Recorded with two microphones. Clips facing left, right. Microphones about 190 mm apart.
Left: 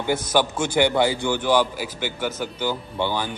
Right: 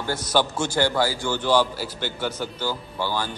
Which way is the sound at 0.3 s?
15° left (ahead or behind).